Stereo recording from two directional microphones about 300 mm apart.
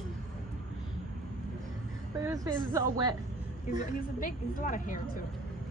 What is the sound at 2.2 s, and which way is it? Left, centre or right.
Speech, centre.